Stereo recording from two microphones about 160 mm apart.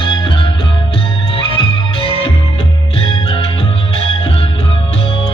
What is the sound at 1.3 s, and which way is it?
Music, 35° left (ahead or behind).